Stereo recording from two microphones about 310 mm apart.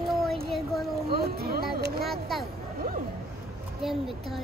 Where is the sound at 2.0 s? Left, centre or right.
Centre.